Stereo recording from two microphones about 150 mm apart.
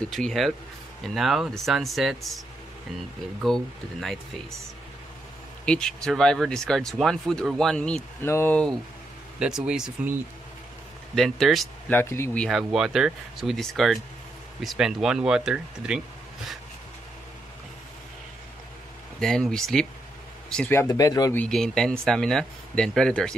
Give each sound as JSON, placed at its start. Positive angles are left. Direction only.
{"t": 0.0, "sound": "speech", "side_deg": 0}
{"t": 3.4, "sound": "speech", "side_deg": 0}
{"t": 5.7, "sound": "speech", "side_deg": 5}
{"t": 9.4, "sound": "speech", "side_deg": -5}
{"t": 11.1, "sound": "speech", "side_deg": 0}
{"t": 11.9, "sound": "speech", "side_deg": 15}
{"t": 12.4, "sound": "speech", "side_deg": 0}
{"t": 19.1, "sound": "speech", "side_deg": 5}
{"t": 20.8, "sound": "speech", "side_deg": 25}
{"t": 21.4, "sound": "speech", "side_deg": 5}